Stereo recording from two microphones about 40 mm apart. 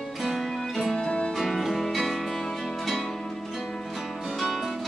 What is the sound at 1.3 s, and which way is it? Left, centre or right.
Music, centre.